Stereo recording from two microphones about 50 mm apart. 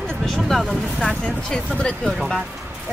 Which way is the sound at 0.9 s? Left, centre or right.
Centre.